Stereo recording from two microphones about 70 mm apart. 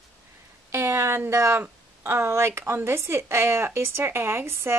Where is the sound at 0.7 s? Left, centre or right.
Right.